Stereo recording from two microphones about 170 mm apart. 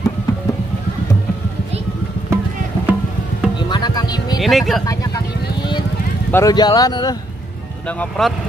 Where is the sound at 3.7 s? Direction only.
25° left (ahead or behind).